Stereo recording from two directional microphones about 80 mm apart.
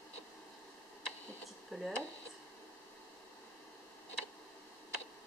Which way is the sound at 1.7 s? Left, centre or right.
Centre.